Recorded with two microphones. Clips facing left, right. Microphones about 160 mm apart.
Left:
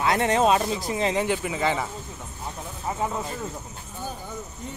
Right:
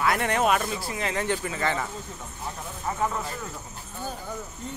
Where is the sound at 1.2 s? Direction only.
10° left (ahead or behind).